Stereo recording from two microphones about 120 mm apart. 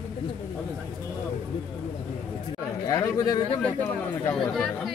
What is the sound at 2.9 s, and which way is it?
Speech, 30° left (ahead or behind).